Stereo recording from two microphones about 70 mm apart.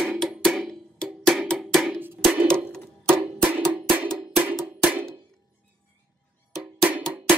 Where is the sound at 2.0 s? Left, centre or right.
Right.